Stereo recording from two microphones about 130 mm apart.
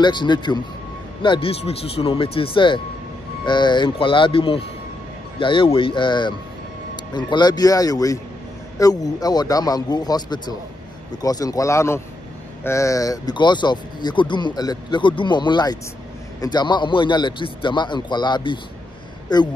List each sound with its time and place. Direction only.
0.0 s a man's voice: 35° left (ahead or behind)